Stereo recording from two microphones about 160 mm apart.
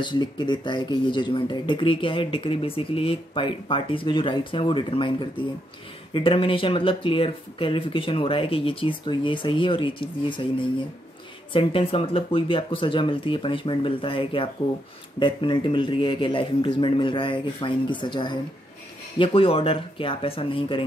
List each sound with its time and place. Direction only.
0.0 s speech: 30° left (ahead or behind)
6.1 s speech: 35° left (ahead or behind)